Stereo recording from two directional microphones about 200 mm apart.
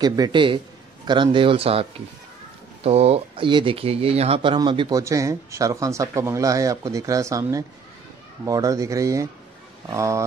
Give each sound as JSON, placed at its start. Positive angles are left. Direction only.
{"t": 0.0, "sound": "speech", "side_deg": -20}